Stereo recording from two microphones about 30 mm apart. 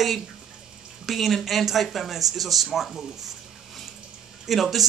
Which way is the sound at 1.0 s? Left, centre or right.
Centre.